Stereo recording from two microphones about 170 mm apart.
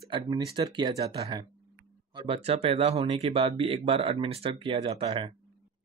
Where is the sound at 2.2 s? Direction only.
35° right (ahead or behind).